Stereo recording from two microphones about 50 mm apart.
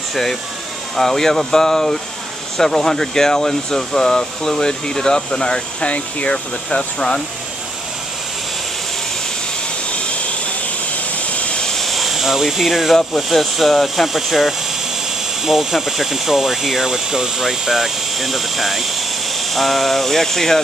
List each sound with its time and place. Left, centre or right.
0.1 s speech: centre
11.4 s vehicle: left
11.7 s a sound: centre
12.9 s speech: centre